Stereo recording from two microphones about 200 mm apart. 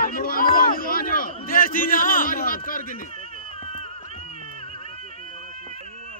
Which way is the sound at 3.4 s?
30° left (ahead or behind).